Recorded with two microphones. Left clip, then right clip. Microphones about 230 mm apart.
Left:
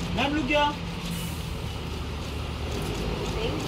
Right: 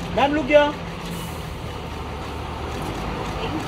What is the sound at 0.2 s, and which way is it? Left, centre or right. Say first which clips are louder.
Speech: right 8 dB; right.